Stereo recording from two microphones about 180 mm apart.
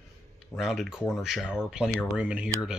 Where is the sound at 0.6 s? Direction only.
Centre (ahead or behind).